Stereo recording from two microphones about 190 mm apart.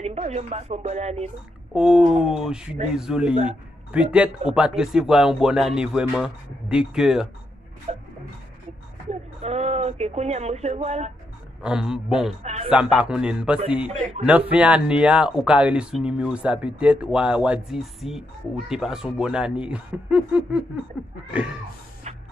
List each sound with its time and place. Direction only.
0.0 s speech: 35° right (ahead or behind)
1.7 s speech: 5° right (ahead or behind)
7.9 s a sound: 35° right (ahead or behind)
9.4 s speech: 35° right (ahead or behind)
11.6 s speech: 5° right (ahead or behind)
22.0 s a sound: 35° right (ahead or behind)